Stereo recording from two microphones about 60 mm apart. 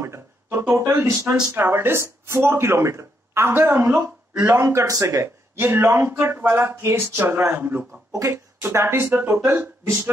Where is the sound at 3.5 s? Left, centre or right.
Right.